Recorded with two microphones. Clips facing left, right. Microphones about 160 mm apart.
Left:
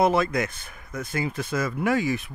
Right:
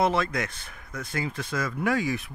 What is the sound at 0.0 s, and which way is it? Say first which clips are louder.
Speech: left 3 dB; 5° left (ahead or behind).